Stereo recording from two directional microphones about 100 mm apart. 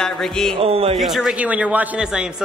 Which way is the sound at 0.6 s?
80° right.